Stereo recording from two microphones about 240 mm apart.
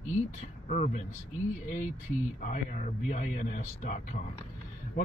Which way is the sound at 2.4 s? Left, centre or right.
Left.